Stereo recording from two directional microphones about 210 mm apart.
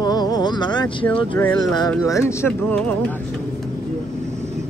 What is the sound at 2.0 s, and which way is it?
Speech, 15° left (ahead or behind).